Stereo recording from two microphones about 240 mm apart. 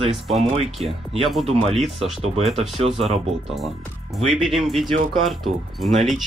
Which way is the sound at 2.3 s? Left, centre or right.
Right.